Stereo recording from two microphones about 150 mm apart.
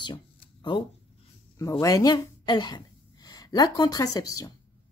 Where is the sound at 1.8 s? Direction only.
25° left (ahead or behind).